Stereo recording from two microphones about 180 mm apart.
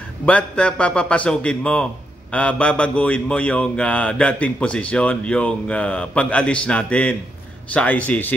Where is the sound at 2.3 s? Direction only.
5° left (ahead or behind).